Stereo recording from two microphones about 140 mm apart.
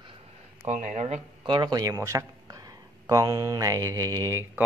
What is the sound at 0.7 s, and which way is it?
Speech, 60° right (ahead or behind).